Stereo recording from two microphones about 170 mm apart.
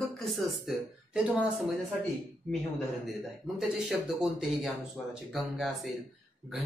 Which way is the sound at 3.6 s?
5° right (ahead or behind).